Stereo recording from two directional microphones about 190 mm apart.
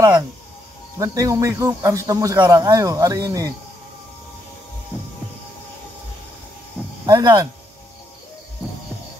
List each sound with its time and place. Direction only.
0.9 s speech: 15° right (ahead or behind)
7.1 s speech: 20° right (ahead or behind)